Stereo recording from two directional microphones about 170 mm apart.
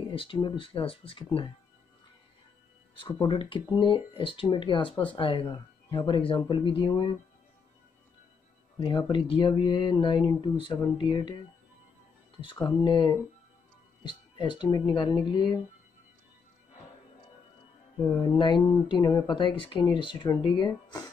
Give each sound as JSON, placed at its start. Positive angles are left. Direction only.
{"t": 0.1, "sound": "speech", "side_deg": 30}
{"t": 3.0, "sound": "speech", "side_deg": 25}
{"t": 8.7, "sound": "speech", "side_deg": 30}
{"t": 12.4, "sound": "speech", "side_deg": 30}
{"t": 17.9, "sound": "speech", "side_deg": 25}